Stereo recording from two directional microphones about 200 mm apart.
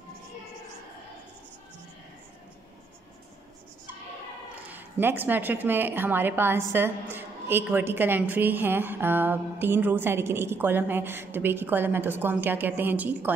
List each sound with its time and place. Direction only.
4.6 s a woman's voice: 10° right (ahead or behind)